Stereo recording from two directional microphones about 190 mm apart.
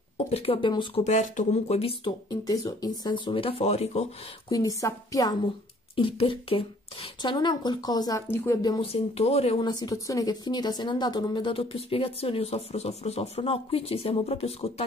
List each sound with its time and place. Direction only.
0.3 s speech: 30° left (ahead or behind)
4.5 s speech: 20° left (ahead or behind)